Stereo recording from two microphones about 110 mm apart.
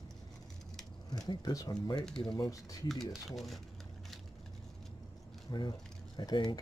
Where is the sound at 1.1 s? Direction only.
35° left (ahead or behind).